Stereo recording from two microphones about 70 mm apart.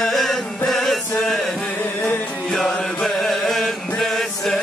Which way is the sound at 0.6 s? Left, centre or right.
Centre.